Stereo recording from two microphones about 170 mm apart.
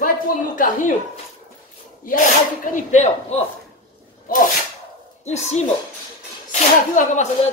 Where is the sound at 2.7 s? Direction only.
45° left (ahead or behind).